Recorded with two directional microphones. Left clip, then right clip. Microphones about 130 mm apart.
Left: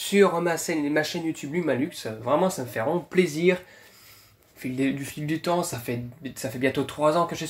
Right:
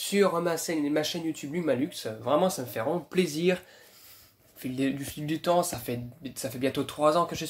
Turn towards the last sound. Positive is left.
turn(degrees=-10)  # may be behind; listen again after turning